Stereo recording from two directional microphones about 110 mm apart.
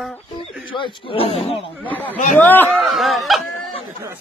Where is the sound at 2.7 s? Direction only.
Centre (ahead or behind).